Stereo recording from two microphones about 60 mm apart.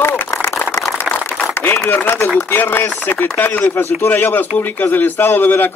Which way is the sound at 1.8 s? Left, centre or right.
Left.